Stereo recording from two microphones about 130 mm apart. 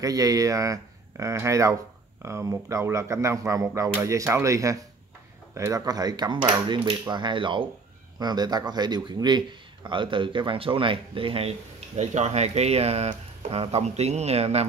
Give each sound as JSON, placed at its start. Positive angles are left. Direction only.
{"t": 0.0, "sound": "speech", "side_deg": -25}
{"t": 12.0, "sound": "speech", "side_deg": -60}